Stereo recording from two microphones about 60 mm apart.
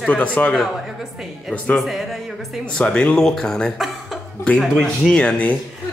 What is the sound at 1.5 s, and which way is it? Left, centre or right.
Speech, left.